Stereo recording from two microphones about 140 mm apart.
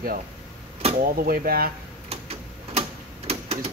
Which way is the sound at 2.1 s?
45° right (ahead or behind).